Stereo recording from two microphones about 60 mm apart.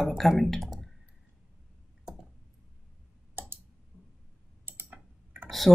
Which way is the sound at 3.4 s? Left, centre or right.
Right.